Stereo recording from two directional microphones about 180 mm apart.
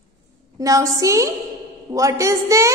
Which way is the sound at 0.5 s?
20° right (ahead or behind).